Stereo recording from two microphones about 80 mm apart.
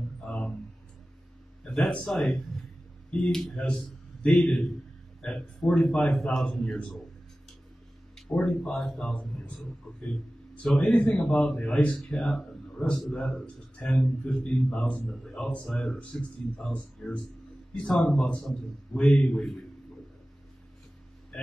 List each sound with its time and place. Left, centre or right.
0.2 s a sound: centre
1.6 s a man's voice: centre
8.3 s a man's voice: centre